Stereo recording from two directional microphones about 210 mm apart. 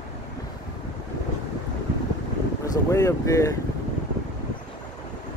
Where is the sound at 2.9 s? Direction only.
15° left (ahead or behind).